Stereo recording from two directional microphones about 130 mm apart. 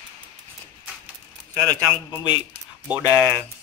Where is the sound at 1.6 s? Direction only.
25° right (ahead or behind).